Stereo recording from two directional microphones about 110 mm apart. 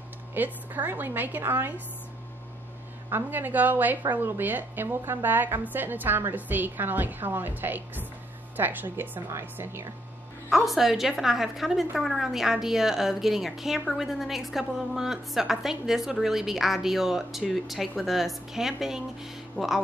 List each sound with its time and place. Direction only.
0.3 s a woman's voice: 15° right (ahead or behind)
3.1 s a woman's voice: 20° right (ahead or behind)
10.5 s a woman's voice: centre (ahead or behind)